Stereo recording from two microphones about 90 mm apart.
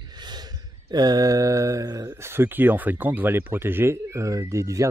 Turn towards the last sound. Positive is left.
turn(degrees=-35)  # may be behind; listen again after turning